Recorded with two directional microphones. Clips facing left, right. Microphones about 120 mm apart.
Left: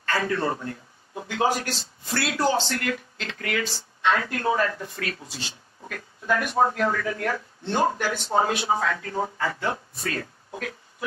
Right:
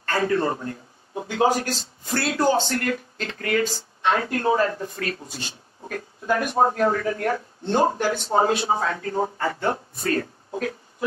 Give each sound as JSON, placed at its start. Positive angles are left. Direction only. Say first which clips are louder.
{"t": 0.2, "sound": "speech", "louder": "right 4 dB", "side_deg": -30}
{"t": 9.9, "sound": "speech", "louder": "right 6 dB", "side_deg": -40}
{"t": 10.5, "sound": "a sound", "louder": "right 7 dB", "side_deg": -35}